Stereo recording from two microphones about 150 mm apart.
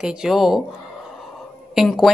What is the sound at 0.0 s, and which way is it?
Speech, 5° right (ahead or behind).